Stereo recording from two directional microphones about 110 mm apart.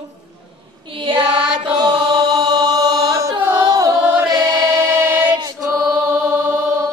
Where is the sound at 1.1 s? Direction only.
10° right (ahead or behind).